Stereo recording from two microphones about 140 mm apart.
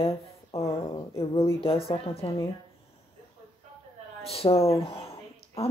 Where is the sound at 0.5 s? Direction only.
45° left (ahead or behind).